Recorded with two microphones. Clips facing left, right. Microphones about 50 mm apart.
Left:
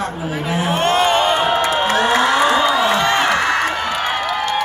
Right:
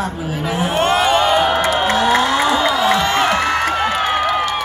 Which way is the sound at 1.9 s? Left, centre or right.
Left.